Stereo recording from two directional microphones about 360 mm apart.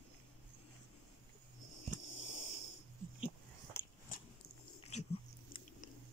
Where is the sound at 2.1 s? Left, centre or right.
Left.